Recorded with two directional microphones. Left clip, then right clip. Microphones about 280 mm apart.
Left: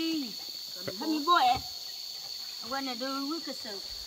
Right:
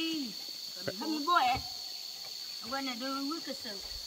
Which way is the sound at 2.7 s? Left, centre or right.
Left.